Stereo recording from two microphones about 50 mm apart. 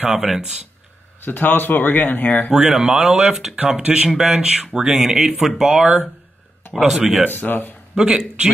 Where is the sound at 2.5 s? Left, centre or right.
Centre.